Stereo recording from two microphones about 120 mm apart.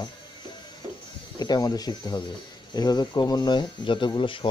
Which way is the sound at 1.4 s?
35° left (ahead or behind).